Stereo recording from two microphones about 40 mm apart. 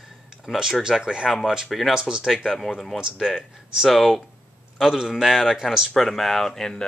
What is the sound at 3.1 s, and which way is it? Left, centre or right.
A man's voice, centre.